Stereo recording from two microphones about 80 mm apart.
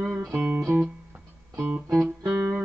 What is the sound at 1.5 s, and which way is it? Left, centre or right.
Music, right.